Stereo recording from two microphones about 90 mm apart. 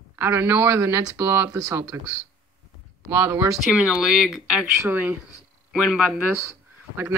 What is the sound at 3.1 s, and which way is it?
Speech, 25° right (ahead or behind).